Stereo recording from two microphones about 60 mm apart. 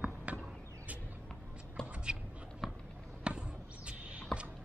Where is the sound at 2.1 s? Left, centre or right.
Centre.